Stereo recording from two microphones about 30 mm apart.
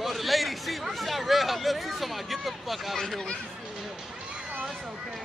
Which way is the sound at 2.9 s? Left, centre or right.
Left.